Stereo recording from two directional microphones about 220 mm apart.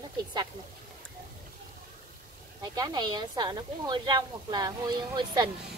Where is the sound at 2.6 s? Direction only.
15° right (ahead or behind).